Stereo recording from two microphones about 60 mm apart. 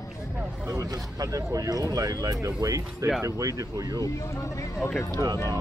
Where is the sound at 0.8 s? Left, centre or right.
Right.